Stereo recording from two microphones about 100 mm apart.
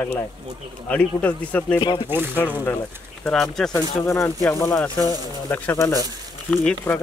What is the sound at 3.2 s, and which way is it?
Speech, 5° left (ahead or behind).